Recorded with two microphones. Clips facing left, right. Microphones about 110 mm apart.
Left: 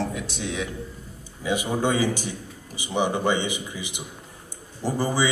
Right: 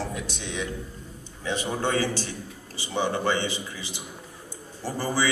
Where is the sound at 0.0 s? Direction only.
Centre (ahead or behind).